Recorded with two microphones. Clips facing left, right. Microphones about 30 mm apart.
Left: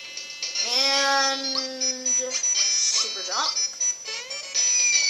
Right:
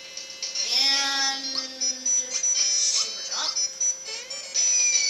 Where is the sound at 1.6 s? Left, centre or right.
Centre.